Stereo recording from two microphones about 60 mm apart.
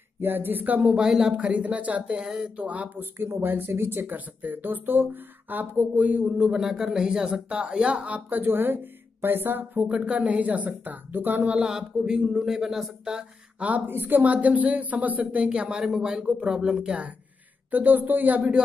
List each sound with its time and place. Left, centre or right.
0.2 s speech: right
0.9 s speech: centre
1.3 s a woman's voice: right
3.0 s a woman's voice: right
8.3 s speech: right
9.8 s a woman's voice: centre
11.5 s speech: centre
13.6 s a woman's voice: right
17.6 s a woman's voice: right